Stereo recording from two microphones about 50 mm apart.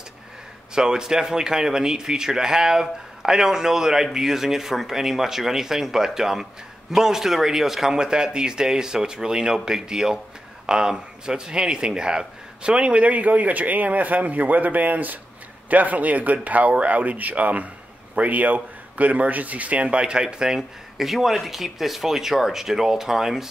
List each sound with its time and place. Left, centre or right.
0.7 s a man's voice: centre